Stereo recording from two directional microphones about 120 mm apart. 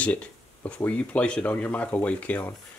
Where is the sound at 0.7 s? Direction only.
10° left (ahead or behind).